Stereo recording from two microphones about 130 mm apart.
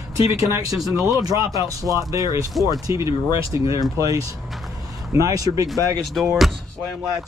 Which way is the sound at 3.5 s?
45° left (ahead or behind).